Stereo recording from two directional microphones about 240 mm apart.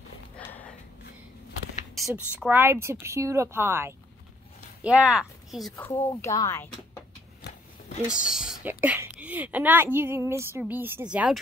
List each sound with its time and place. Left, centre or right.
0.4 s a sound: centre
2.0 s a woman's voice: centre
5.8 s speech: centre
8.3 s a woman's voice: centre